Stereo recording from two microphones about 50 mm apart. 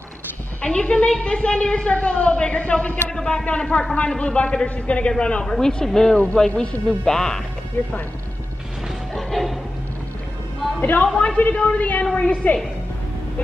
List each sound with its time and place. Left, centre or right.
0.6 s a woman's voice: left
3.1 s speech: centre
3.7 s a woman's voice: left
7.8 s speech: left
9.1 s music: centre
10.8 s a woman's voice: left
12.4 s speech: left